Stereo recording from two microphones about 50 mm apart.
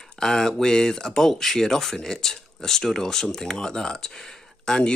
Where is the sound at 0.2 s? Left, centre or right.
Centre.